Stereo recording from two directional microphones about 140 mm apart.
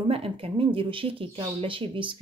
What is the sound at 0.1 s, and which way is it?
Speech, 40° right (ahead or behind).